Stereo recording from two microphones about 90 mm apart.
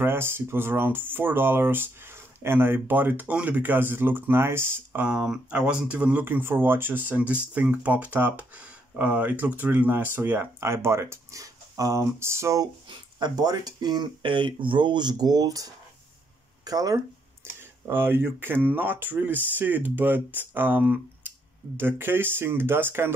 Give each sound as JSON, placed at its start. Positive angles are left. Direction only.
{"t": 0.0, "sound": "speech", "side_deg": -25}
{"t": 5.0, "sound": "speech", "side_deg": -10}
{"t": 13.2, "sound": "speech", "side_deg": -50}
{"t": 17.6, "sound": "speech", "side_deg": -25}